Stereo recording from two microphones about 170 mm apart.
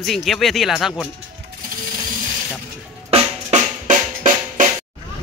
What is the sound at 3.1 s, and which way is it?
Music, 45° right (ahead or behind).